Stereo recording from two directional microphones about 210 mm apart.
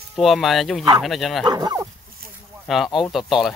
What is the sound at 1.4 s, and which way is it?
Speech, 20° right (ahead or behind).